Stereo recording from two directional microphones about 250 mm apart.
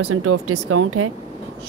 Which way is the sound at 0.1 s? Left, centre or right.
Right.